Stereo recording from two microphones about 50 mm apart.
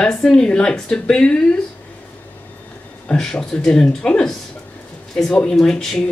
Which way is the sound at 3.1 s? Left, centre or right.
Centre.